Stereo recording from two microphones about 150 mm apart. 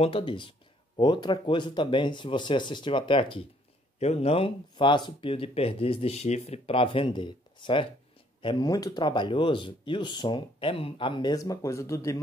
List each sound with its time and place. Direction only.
0.0 s speech: 35° left (ahead or behind); by 12.2 s 20° left (ahead or behind)